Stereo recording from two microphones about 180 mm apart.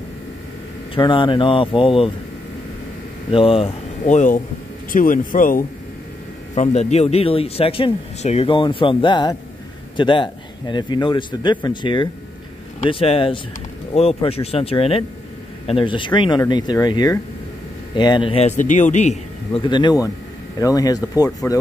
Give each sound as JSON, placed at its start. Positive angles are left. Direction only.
{"t": 0.9, "sound": "a man's voice", "side_deg": 25}
{"t": 3.3, "sound": "speech", "side_deg": 30}
{"t": 6.5, "sound": "a man's voice", "side_deg": 40}
{"t": 19.6, "sound": "a man's voice", "side_deg": 25}